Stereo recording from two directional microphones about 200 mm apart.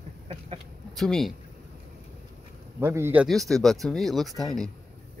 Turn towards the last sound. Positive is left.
turn(degrees=0)  # may be behind; listen again after turning